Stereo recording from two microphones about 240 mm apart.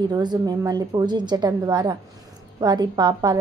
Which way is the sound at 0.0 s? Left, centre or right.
Centre.